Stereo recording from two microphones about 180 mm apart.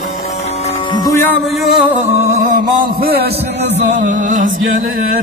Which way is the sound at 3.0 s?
60° right (ahead or behind).